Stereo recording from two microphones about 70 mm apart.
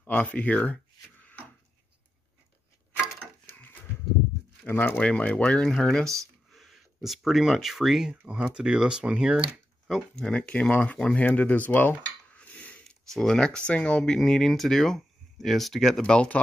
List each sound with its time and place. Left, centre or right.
0.0 s speech: left
3.4 s a sound: left
4.6 s speech: left; by 8.1 s centre
8.3 s speech: centre
10.1 s speech: centre
12.4 s a sound: left
13.1 s speech: centre
16.0 s speech: centre